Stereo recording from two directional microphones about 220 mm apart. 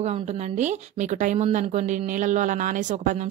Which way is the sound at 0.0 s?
30° right (ahead or behind).